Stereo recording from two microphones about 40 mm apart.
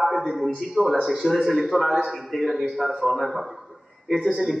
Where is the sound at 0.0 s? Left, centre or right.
Centre.